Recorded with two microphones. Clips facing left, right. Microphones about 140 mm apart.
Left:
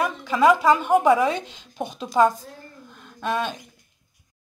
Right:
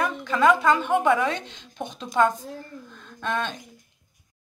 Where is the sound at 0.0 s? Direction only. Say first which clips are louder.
Left 2 dB; 15° left (ahead or behind).